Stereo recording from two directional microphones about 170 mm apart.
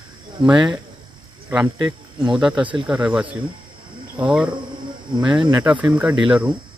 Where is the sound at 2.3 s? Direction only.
5° right (ahead or behind).